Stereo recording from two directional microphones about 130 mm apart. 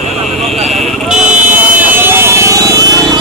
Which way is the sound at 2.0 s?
20° right (ahead or behind).